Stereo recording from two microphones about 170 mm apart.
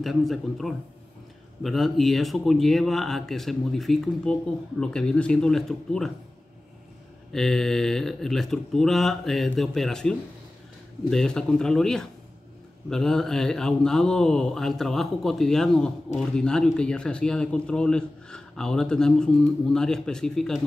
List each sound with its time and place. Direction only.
0.0 s speech: centre (ahead or behind)
7.3 s speech: centre (ahead or behind)